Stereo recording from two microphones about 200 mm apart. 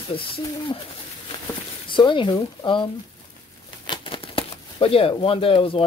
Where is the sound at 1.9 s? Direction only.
25° left (ahead or behind).